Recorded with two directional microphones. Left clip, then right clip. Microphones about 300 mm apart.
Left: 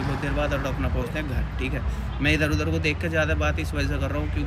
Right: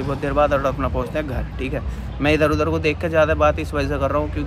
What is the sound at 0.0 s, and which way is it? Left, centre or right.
Speech, centre.